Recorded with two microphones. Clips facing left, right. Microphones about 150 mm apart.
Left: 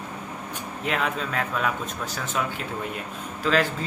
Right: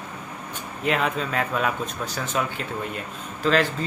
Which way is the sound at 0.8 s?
5° right (ahead or behind).